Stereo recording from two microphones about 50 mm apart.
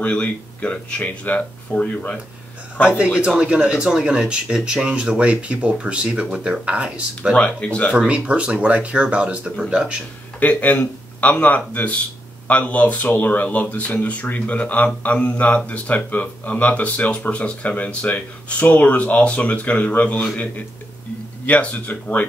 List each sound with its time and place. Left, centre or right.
0.0 s speech: left
3.2 s speech: right
7.3 s speech: left
8.1 s speech: right
10.4 s speech: left
21.5 s speech: left